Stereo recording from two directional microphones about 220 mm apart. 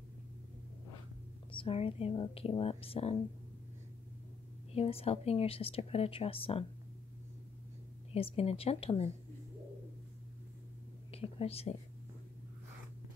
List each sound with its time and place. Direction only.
1.5 s speech: 25° left (ahead or behind)
4.7 s speech: 25° left (ahead or behind)
8.1 s speech: 25° left (ahead or behind)
11.1 s whispering: 25° left (ahead or behind)